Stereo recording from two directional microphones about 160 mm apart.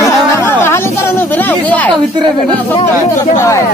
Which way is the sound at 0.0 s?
15° left (ahead or behind).